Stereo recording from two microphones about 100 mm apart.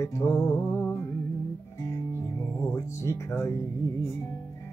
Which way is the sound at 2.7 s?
30° left (ahead or behind).